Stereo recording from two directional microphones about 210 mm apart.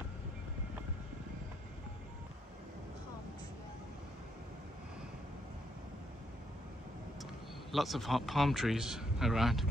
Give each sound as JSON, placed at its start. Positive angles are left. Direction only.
{"t": 7.7, "sound": "speech", "side_deg": 0}